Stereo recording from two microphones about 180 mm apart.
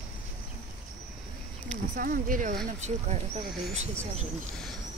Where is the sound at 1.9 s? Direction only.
50° right (ahead or behind).